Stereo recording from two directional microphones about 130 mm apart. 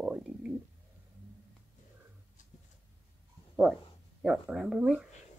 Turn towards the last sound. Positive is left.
turn(degrees=-5)  # may be behind; listen again after turning